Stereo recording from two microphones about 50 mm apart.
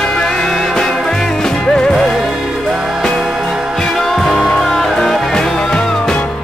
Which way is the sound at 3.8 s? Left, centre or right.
Centre.